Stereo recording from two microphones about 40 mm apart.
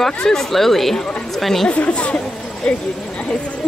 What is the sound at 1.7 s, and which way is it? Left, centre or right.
Speech, left.